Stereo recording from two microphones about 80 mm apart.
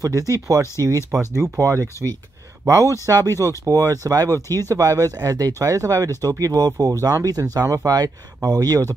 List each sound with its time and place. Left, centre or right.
0.3 s speech: right